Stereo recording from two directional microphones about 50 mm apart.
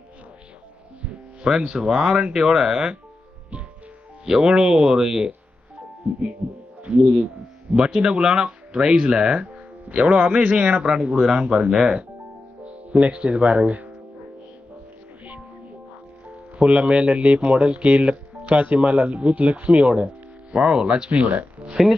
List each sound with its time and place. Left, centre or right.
1.0 s speech: centre
4.3 s speech: centre
6.8 s speech: right
16.5 s speech: right